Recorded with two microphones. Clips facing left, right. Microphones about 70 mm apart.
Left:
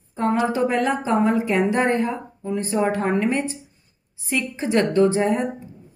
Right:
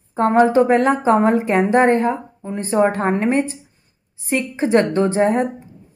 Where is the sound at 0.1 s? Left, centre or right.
Right.